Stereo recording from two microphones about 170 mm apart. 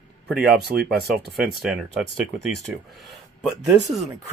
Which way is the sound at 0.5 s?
70° right (ahead or behind).